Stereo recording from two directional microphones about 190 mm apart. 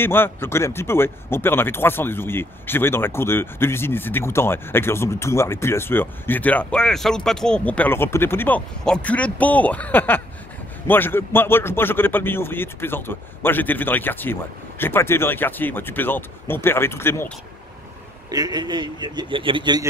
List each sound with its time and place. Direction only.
0.0 s speech: 10° left (ahead or behind)
18.3 s speech: 20° right (ahead or behind)